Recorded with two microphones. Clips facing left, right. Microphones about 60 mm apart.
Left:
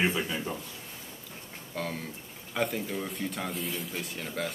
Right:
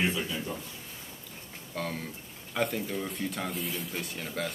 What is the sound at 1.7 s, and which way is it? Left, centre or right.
Speech, centre.